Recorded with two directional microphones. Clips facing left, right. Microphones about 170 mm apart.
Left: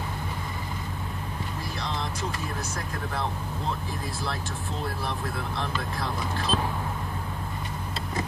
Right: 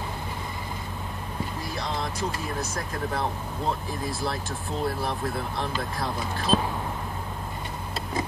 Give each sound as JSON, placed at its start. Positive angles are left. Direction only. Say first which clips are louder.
{"t": 6.5, "sound": "vehicle", "louder": "right 5 dB", "side_deg": -25}